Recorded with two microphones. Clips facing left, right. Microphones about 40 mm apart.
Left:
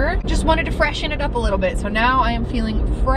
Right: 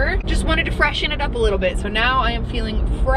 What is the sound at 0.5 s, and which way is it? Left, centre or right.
Speech, right.